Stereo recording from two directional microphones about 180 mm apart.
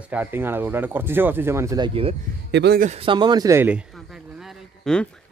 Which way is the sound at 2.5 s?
70° right (ahead or behind).